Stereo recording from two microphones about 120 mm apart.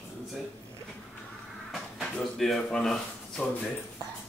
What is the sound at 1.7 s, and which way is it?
Speech, centre (ahead or behind).